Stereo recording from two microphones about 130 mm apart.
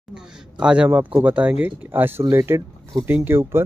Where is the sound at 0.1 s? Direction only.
5° right (ahead or behind).